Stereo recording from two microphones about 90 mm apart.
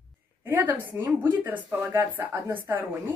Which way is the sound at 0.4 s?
20° right (ahead or behind).